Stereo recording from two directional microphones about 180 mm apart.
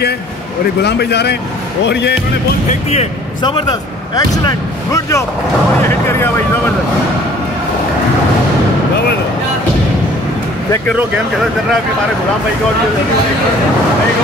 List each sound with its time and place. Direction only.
0.8 s speech: 65° left (ahead or behind)
2.7 s speech: 35° left (ahead or behind)
4.1 s speech: 20° left (ahead or behind)